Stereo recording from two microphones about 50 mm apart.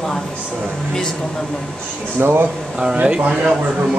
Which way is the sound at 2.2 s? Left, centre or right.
Right.